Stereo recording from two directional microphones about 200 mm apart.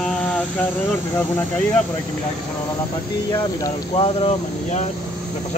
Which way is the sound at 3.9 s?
30° left (ahead or behind).